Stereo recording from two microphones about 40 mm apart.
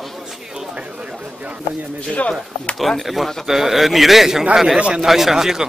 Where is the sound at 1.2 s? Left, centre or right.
Right.